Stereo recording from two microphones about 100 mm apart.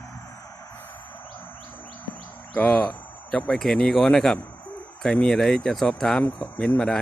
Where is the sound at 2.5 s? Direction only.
15° left (ahead or behind).